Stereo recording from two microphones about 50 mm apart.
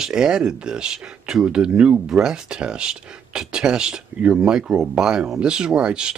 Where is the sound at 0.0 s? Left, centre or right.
Centre.